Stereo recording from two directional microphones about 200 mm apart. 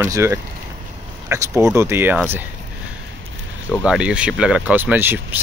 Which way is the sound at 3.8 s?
5° right (ahead or behind).